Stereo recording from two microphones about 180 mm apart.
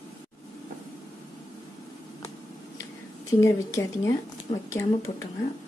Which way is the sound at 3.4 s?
15° left (ahead or behind).